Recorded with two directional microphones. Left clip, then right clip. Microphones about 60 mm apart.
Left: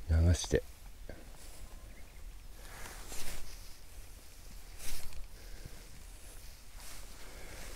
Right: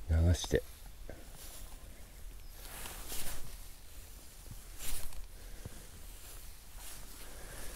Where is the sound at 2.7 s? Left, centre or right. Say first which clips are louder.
Right 1 dB; right.